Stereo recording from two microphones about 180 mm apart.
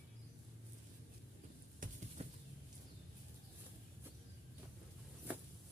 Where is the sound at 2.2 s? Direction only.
35° right (ahead or behind).